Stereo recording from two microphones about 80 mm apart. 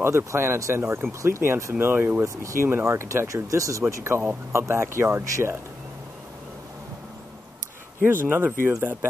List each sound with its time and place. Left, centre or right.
0.0 s speech: right
8.0 s speech: right